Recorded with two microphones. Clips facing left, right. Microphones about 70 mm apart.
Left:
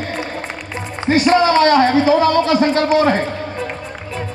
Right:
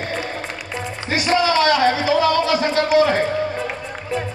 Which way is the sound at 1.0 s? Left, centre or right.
Left.